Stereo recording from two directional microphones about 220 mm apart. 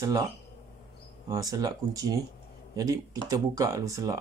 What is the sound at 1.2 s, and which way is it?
Speech, 15° right (ahead or behind).